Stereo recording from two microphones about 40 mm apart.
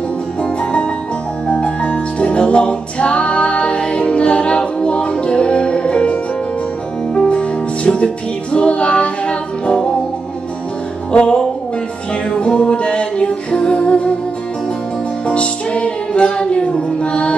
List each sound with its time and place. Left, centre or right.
0.4 s music: left
7.2 s music: left
11.1 s music: left
15.2 s music: left